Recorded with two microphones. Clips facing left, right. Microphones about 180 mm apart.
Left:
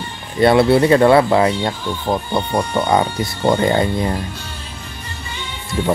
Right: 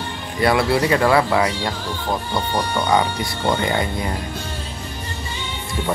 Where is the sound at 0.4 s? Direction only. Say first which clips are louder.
Left 6 dB; 25° left (ahead or behind).